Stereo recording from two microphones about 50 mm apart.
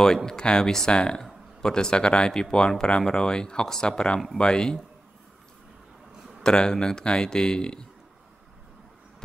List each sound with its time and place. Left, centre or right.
0.0 s speech: centre
6.4 s speech: centre